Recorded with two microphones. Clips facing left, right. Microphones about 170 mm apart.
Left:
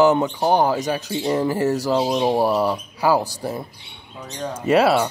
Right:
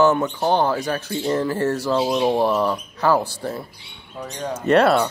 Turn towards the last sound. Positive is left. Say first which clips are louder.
# right 1 dB
turn(degrees=5)  # may be behind; listen again after turning